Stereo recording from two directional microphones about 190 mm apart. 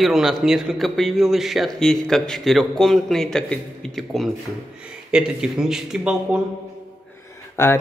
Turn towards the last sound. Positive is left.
turn(degrees=15)  # may be behind; listen again after turning